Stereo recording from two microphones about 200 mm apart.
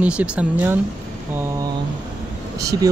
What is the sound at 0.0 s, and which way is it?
Speech, 5° right (ahead or behind).